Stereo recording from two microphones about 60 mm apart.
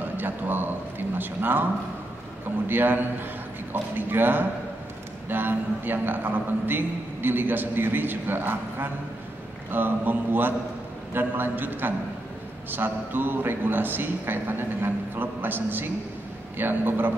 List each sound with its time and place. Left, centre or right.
0.2 s a man's voice: right
2.7 s a man's voice: right